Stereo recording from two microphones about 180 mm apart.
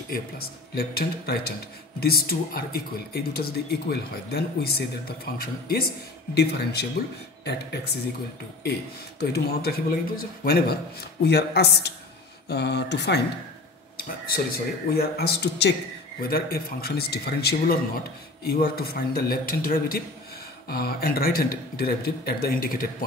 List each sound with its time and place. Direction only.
0.1 s speech: 55° left (ahead or behind)
9.2 s speech: 60° left (ahead or behind)
12.4 s mantra: 70° left (ahead or behind)
13.9 s speech: 55° left (ahead or behind)